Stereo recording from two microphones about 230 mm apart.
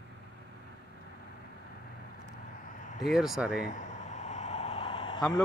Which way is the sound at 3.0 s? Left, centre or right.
Centre.